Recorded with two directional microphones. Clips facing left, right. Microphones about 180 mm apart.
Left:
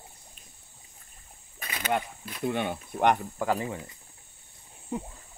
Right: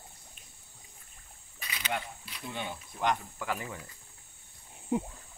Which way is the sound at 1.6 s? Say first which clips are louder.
Left 7 dB; 50° left (ahead or behind).